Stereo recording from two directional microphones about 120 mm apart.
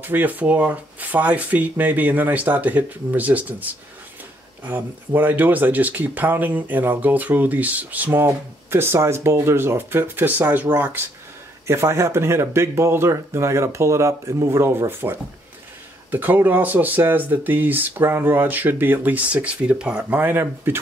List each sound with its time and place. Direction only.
0.0 s speech: 15° right (ahead or behind)